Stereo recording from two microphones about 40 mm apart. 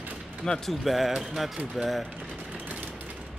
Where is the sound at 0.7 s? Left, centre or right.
Centre.